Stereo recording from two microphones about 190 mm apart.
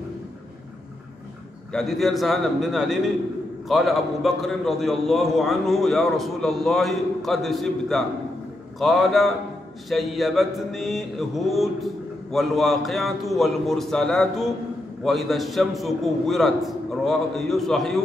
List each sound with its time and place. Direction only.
1.7 s mantra: centre (ahead or behind)